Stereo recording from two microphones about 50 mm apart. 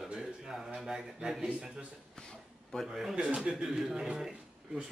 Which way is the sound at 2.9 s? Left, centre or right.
Centre.